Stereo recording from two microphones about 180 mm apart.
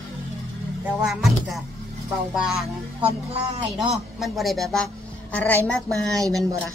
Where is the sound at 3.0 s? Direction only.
30° right (ahead or behind).